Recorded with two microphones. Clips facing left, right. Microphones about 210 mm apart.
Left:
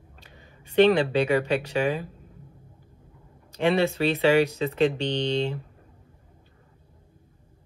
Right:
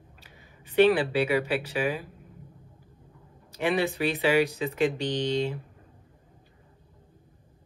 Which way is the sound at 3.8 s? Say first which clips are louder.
Left 4 dB; 15° right (ahead or behind).